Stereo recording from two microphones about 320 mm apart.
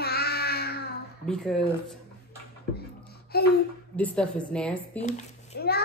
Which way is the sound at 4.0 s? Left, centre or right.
Centre.